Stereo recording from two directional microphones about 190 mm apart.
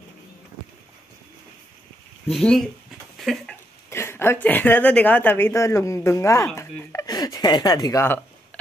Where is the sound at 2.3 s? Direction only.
Centre (ahead or behind).